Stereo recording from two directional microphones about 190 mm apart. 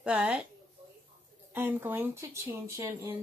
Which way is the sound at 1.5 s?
10° right (ahead or behind).